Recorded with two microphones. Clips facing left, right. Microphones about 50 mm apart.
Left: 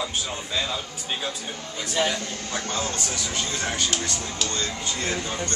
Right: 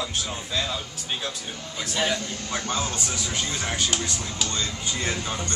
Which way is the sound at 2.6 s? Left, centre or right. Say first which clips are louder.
Even; centre.